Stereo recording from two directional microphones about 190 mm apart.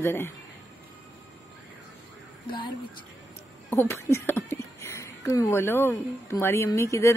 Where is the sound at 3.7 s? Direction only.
15° left (ahead or behind).